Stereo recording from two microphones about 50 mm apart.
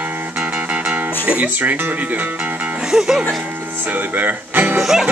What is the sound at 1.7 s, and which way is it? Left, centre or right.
Speech, right.